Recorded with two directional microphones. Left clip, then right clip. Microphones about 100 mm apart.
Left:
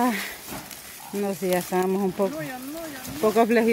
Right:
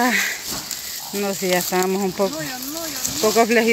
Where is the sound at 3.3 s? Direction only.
20° left (ahead or behind).